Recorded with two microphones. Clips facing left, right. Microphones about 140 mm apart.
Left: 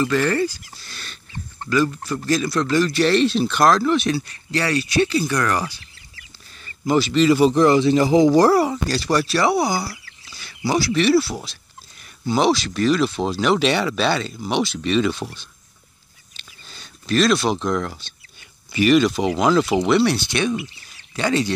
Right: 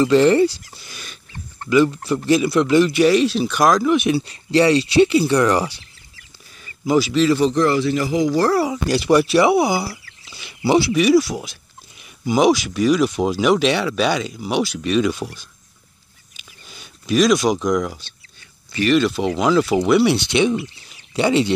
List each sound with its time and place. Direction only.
0.0 s a man's voice: 20° right (ahead or behind); by 8.3 s 25° left (ahead or behind)
8.8 s speech: 15° right (ahead or behind)
9.6 s speech: 5° right (ahead or behind)
10.2 s chicken: 20° right (ahead or behind)
10.6 s speech: 15° right (ahead or behind)
16.3 s a sound: 10° right (ahead or behind)
18.7 s speech: 5° left (ahead or behind)
20.6 s speech: 20° right (ahead or behind)